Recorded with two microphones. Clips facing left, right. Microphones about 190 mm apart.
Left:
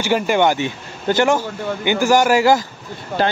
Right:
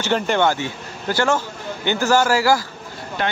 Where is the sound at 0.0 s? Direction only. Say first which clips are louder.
Left 2 dB; 10° left (ahead or behind).